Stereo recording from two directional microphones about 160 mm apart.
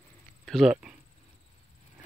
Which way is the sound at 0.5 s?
5° right (ahead or behind).